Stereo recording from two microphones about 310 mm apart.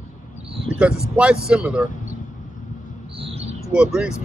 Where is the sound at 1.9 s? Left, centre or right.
Left.